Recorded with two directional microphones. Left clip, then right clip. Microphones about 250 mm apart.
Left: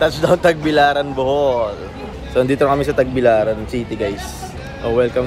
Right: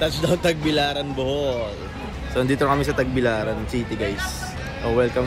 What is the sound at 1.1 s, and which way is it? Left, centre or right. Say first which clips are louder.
Speech: left 7 dB; left.